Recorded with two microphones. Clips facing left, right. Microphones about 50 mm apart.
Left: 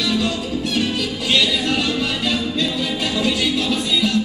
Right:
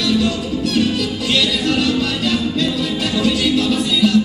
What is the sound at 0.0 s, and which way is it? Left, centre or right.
Music, centre.